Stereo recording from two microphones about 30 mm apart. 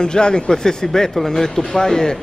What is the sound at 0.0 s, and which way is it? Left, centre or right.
Speech, left.